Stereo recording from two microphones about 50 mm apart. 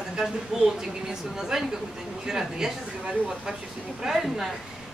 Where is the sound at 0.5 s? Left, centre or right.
Centre.